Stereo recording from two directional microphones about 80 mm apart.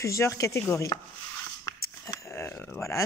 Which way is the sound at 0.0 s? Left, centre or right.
Left.